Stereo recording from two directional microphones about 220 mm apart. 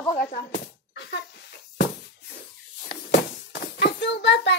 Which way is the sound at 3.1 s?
45° left (ahead or behind).